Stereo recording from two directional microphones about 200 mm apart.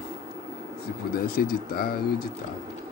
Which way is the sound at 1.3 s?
45° left (ahead or behind).